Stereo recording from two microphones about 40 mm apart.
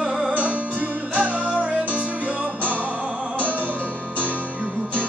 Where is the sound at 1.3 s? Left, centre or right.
Right.